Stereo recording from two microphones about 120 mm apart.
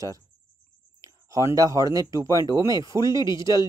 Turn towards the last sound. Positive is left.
turn(degrees=40)  # may be behind; listen again after turning